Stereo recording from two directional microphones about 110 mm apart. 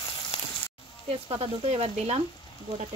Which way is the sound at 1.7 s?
80° right.